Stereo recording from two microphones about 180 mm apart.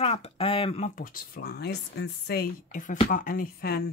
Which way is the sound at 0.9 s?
50° left (ahead or behind).